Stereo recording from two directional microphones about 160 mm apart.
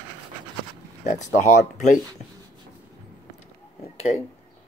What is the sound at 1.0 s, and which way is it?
Speech, 50° left (ahead or behind).